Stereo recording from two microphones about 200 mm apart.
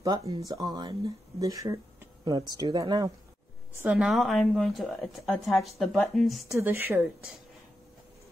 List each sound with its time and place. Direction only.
0.3 s speech: 20° right (ahead or behind)
3.8 s a woman's voice: 5° right (ahead or behind)
6.5 s speech: 10° right (ahead or behind)